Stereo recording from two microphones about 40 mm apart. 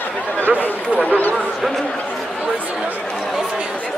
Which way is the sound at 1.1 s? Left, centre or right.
Left.